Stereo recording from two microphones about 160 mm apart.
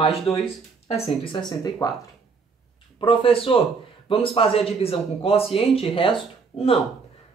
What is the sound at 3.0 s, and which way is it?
Speech, 35° left (ahead or behind).